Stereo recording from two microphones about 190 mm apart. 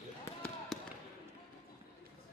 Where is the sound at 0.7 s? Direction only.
Centre (ahead or behind).